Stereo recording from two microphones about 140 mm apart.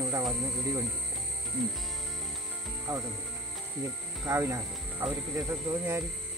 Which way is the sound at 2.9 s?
25° right (ahead or behind).